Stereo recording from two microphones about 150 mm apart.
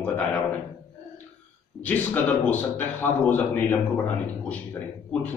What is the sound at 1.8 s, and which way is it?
A man's voice, 10° left (ahead or behind).